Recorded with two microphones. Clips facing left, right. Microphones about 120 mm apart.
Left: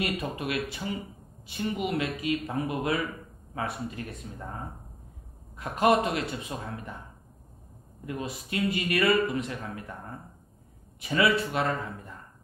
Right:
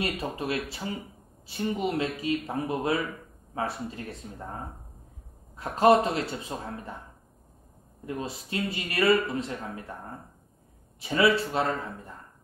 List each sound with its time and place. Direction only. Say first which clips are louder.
0.0 s a man's voice: even; 30° right (ahead or behind)
5.6 s a man's voice: right 3 dB; 30° right (ahead or behind)
8.0 s a man's voice: right 1 dB; 30° right (ahead or behind)
11.0 s a man's voice: right 2 dB; 30° right (ahead or behind)